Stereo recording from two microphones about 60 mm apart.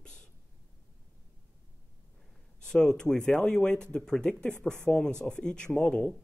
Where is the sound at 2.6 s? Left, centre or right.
Centre.